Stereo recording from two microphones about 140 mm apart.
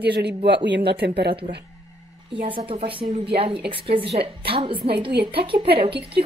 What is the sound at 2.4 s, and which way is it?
A woman's voice, 40° right (ahead or behind).